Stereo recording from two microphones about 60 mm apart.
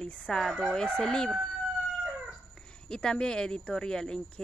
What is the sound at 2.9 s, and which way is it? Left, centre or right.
Speech, centre.